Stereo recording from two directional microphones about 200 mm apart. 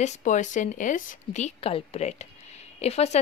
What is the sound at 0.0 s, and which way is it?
A woman's voice, 40° left (ahead or behind).